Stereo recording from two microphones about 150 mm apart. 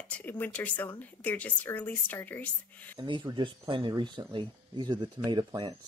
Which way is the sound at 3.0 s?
30° right (ahead or behind).